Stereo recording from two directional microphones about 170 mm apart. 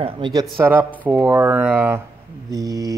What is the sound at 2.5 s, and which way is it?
Speech, 20° right (ahead or behind).